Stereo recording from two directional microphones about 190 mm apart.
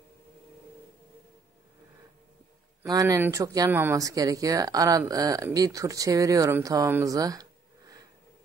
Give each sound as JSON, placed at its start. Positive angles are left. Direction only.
{"t": 2.8, "sound": "speech", "side_deg": -15}